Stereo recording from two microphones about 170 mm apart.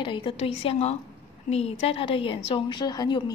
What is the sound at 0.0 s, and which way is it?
A woman's voice, 30° left (ahead or behind).